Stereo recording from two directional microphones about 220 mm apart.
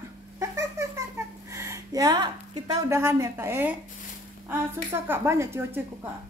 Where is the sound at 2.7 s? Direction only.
10° right (ahead or behind).